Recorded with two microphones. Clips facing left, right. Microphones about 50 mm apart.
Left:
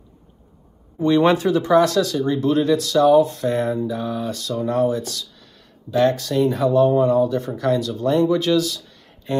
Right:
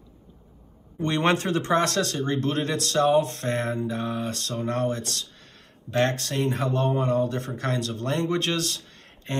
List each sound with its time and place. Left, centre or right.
1.0 s speech: right